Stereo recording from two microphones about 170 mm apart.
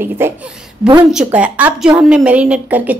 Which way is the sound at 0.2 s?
15° right (ahead or behind).